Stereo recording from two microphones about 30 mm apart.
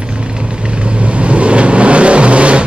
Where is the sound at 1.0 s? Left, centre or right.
Right.